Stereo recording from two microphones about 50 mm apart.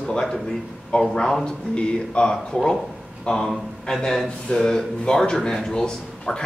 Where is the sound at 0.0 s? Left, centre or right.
Centre.